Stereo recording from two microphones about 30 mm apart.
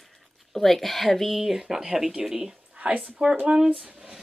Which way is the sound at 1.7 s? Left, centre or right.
Centre.